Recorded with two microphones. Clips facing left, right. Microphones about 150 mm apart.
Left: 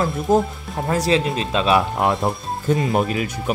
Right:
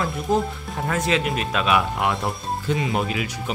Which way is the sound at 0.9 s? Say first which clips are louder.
Left 4 dB; 35° left (ahead or behind).